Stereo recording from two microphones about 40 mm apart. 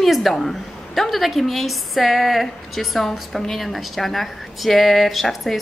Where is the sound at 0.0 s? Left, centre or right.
Centre.